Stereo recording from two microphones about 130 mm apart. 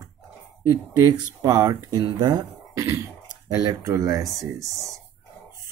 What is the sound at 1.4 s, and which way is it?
Speech, 30° right (ahead or behind).